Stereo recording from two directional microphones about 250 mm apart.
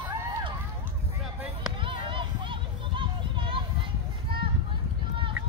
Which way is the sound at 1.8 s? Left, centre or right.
Centre.